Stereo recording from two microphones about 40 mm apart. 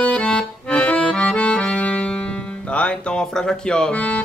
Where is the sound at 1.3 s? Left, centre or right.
Left.